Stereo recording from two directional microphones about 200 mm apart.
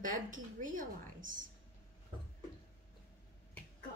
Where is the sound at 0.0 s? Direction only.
40° right (ahead or behind).